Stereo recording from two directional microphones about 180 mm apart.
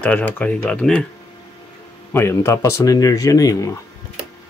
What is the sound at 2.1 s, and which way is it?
Speech, 15° left (ahead or behind).